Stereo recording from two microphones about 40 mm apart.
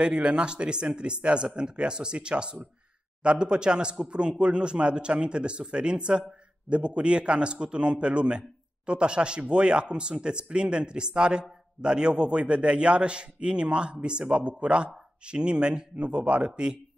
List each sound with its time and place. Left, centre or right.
0.0 s a man's voice: right